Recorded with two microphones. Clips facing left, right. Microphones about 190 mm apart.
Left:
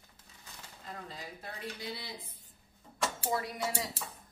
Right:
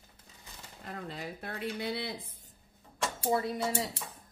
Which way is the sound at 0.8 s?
60° right (ahead or behind).